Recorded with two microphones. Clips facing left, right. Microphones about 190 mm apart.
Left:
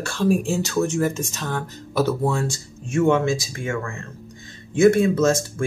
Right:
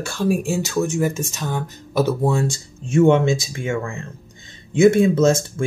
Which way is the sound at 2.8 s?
25° right (ahead or behind).